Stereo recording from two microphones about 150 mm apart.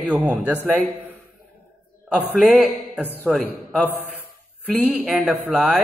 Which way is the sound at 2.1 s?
10° right (ahead or behind).